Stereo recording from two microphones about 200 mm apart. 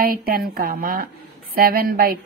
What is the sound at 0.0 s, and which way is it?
A woman's voice, 50° right (ahead or behind).